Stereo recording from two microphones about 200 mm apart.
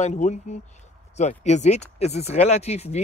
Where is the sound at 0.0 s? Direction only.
35° left (ahead or behind).